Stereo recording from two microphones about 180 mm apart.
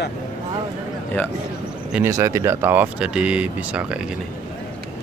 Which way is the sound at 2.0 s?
15° right (ahead or behind).